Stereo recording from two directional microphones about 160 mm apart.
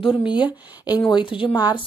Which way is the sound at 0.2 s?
30° left (ahead or behind).